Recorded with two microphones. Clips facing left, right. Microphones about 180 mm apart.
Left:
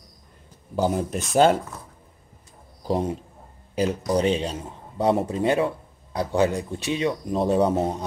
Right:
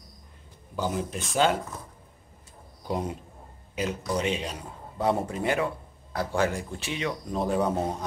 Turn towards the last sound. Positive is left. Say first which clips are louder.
# left 5 dB
turn(degrees=25)  # may be behind; listen again after turning